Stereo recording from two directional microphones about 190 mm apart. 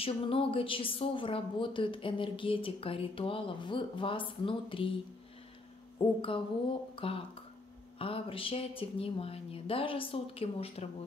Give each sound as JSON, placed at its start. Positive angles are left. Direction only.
{"t": 0.0, "sound": "a woman's voice", "side_deg": 30}
{"t": 6.0, "sound": "a woman's voice", "side_deg": 30}